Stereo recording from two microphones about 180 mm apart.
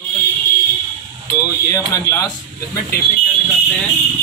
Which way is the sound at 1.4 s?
15° left (ahead or behind).